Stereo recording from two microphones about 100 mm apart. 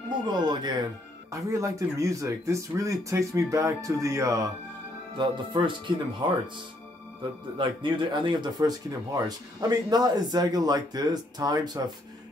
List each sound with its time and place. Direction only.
0.3 s speech: 45° right (ahead or behind)
1.3 s speech: 30° right (ahead or behind)
5.1 s speech: 50° right (ahead or behind)